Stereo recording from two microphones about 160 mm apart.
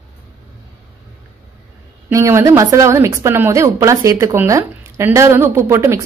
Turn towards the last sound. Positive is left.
turn(degrees=-15)  # may be behind; listen again after turning